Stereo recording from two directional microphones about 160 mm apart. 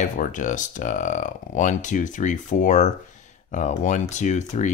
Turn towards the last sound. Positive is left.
turn(degrees=45)  # may be behind; listen again after turning